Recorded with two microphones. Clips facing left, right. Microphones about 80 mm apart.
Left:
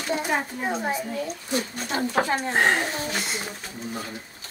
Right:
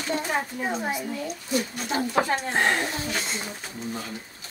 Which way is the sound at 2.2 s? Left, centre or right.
Centre.